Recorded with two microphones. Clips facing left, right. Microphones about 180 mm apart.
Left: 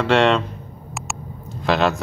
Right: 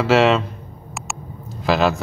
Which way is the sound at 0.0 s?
5° right (ahead or behind).